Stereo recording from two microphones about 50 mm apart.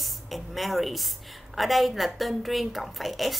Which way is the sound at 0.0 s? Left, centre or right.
Centre.